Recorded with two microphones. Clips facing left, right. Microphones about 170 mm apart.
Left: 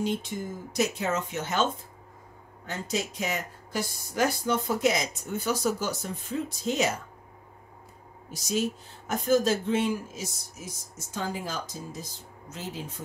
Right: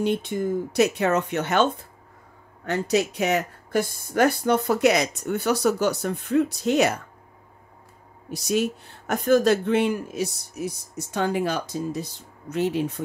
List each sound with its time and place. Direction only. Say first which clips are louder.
0.0 s speech: right 6 dB; 65° right (ahead or behind)
8.3 s speech: right 5 dB; 65° right (ahead or behind)